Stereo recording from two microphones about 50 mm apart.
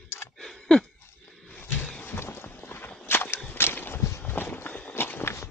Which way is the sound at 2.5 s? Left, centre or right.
Left.